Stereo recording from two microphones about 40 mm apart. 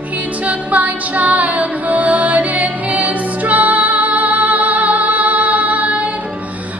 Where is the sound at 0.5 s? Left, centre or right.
Right.